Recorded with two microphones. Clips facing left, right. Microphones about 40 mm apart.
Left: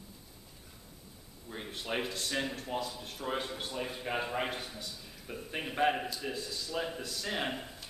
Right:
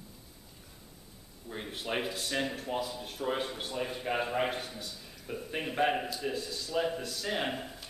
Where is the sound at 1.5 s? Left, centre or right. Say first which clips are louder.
Right 2 dB; centre.